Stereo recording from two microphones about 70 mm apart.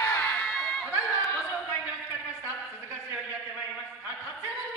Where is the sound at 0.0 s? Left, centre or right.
Left.